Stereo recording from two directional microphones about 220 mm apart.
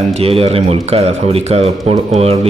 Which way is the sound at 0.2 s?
25° right (ahead or behind).